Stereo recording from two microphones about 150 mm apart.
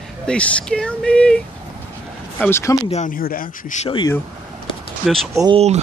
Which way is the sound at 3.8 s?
35° left (ahead or behind).